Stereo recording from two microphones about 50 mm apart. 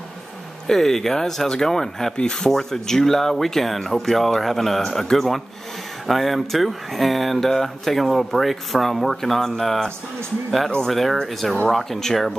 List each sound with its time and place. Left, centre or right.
0.7 s speech: centre
10.9 s speech: centre